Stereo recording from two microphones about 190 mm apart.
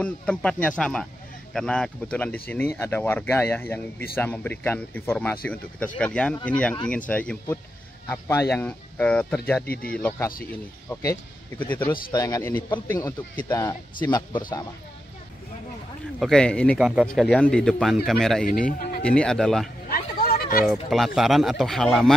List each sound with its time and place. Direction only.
0.0 s speech: 5° left (ahead or behind)
9.7 s speech: 50° left (ahead or behind)
9.9 s speech: 10° left (ahead or behind)
16.2 s speech: 5° left (ahead or behind)
18.4 s speech: 45° left (ahead or behind)
19.0 s speech: 5° left (ahead or behind)
19.9 s a sound: 50° left (ahead or behind)
20.6 s speech: centre (ahead or behind)